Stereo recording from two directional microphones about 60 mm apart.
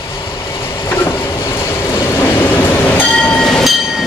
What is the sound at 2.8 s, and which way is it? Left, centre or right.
Train, left.